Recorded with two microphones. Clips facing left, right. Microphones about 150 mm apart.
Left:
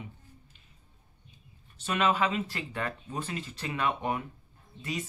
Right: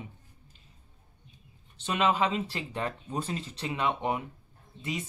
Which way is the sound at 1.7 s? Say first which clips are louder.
Right 1 dB; 20° right (ahead or behind).